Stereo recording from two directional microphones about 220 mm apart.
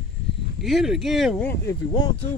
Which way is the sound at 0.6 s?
Centre (ahead or behind).